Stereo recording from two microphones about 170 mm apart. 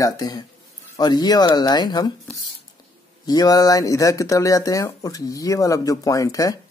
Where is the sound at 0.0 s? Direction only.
25° left (ahead or behind).